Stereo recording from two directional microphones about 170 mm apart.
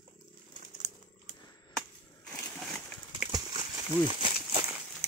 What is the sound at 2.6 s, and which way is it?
Horse, 5° left (ahead or behind).